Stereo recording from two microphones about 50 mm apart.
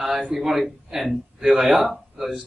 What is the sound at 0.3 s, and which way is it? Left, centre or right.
A man's voice, centre.